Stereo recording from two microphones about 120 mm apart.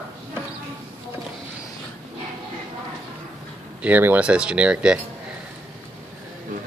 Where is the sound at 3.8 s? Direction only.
15° right (ahead or behind).